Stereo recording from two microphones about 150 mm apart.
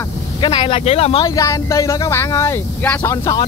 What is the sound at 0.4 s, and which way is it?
Speech, 30° left (ahead or behind).